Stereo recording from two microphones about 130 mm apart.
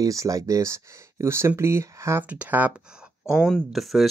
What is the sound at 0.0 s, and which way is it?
Speech, 25° right (ahead or behind).